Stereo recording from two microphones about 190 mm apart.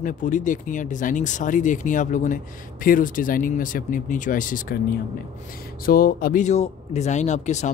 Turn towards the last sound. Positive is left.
turn(degrees=35)  # may be behind; listen again after turning